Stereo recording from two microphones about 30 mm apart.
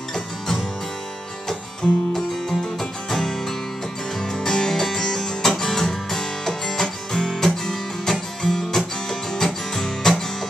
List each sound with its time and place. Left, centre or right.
1.5 s music: centre